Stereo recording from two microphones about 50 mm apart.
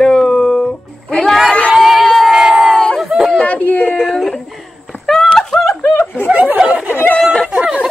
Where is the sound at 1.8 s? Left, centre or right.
Centre.